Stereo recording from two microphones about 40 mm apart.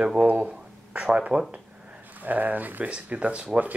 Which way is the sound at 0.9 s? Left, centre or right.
Right.